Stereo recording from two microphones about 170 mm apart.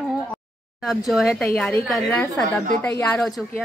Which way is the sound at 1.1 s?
Centre (ahead or behind).